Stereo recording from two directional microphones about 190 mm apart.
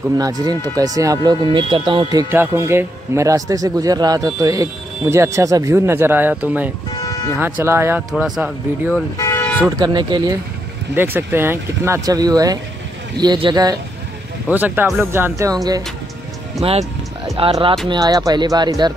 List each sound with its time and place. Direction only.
0.2 s speech: 20° right (ahead or behind)
2.1 s a man's voice: 15° right (ahead or behind)
6.9 s music: 20° left (ahead or behind)
7.3 s a man's voice: 10° right (ahead or behind)
8.9 s toot: 15° left (ahead or behind)
9.7 s speech: 20° right (ahead or behind)
11.0 s a man's voice: 10° right (ahead or behind)
14.5 s a man's voice: 10° right (ahead or behind)
17.4 s speech: 30° right (ahead or behind)